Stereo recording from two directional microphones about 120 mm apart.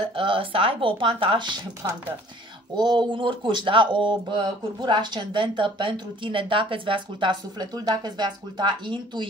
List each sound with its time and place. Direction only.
0.0 s speech: 45° right (ahead or behind)
2.7 s speech: 40° right (ahead or behind)